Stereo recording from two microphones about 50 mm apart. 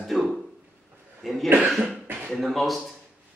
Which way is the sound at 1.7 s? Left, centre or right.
Centre.